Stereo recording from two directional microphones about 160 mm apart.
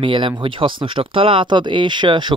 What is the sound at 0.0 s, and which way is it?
Speech, 30° right (ahead or behind).